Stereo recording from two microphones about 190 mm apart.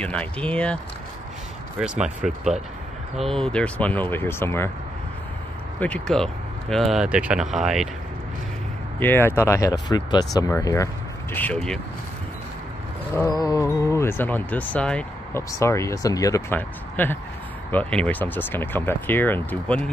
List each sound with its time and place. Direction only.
0.0 s speech: 5° left (ahead or behind)
1.8 s speech: centre (ahead or behind)
5.8 s speech: 5° left (ahead or behind)
9.0 s speech: 10° left (ahead or behind)
13.1 s speech: 15° left (ahead or behind)